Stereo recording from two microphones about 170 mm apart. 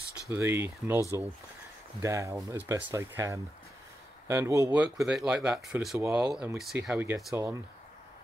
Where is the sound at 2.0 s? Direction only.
15° right (ahead or behind).